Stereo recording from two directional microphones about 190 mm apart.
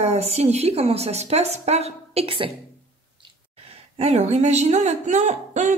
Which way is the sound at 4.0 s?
35° right (ahead or behind).